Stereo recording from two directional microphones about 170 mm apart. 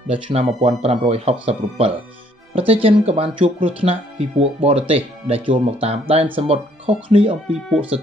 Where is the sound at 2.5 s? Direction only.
35° right (ahead or behind).